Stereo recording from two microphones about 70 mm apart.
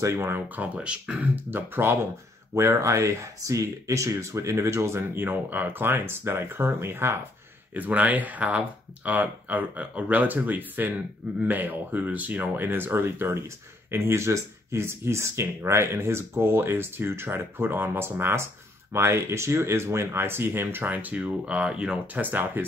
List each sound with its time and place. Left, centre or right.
0.0 s speech: right
0.5 s speech: centre
2.5 s speech: right
7.7 s speech: right